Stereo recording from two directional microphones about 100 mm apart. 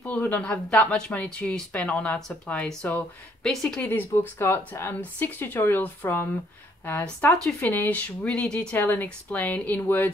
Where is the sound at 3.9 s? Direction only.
20° left (ahead or behind).